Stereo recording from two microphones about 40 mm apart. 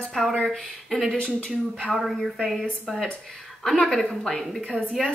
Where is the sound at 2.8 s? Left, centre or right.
Centre.